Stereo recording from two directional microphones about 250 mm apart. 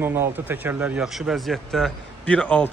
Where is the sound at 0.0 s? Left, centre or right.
Centre.